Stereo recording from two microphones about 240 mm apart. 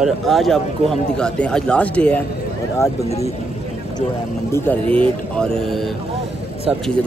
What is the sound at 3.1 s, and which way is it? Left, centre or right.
Speech, left.